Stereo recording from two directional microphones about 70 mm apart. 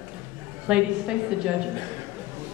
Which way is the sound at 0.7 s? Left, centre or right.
Centre.